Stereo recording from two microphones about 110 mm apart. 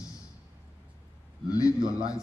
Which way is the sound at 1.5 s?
30° left (ahead or behind).